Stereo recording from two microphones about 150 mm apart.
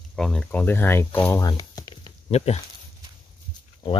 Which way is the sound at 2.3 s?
45° left (ahead or behind).